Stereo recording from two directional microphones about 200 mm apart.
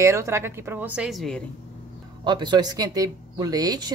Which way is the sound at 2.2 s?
20° right (ahead or behind).